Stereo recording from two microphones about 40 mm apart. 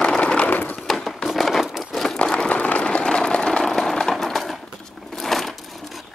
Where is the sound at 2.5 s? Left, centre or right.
Left.